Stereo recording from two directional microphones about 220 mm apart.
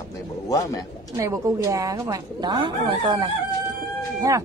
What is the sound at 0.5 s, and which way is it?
Speech, 15° left (ahead or behind).